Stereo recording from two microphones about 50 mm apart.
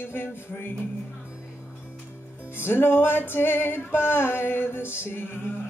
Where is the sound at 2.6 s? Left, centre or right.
Left.